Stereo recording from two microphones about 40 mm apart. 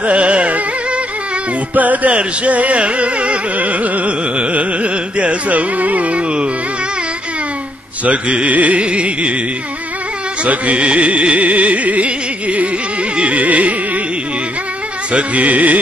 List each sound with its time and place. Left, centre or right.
0.0 s carnatic music: right
1.8 s music: right
8.0 s music: right
10.4 s music: right
13.2 s carnatic music: right
15.1 s music: right